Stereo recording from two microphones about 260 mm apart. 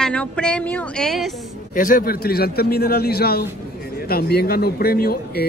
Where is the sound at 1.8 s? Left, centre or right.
Left.